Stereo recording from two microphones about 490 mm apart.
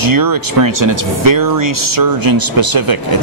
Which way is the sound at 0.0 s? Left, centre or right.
Right.